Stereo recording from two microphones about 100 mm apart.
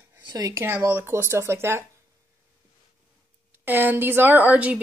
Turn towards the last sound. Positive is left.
turn(degrees=-15)  # may be behind; listen again after turning